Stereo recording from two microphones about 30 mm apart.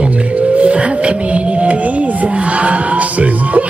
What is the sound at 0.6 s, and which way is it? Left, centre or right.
Music, right.